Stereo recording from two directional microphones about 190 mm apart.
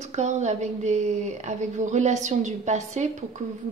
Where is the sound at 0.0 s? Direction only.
35° right (ahead or behind).